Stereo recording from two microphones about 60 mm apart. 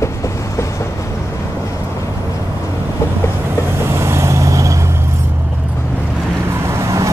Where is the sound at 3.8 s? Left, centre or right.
Right.